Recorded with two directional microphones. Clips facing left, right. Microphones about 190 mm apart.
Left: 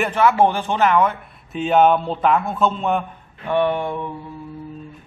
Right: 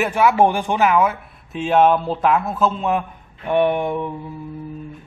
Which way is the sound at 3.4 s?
15° right (ahead or behind).